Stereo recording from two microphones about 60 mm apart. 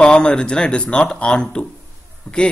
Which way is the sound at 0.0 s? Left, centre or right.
Centre.